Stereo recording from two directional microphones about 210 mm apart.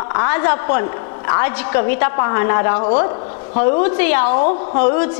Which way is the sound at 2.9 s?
30° left (ahead or behind).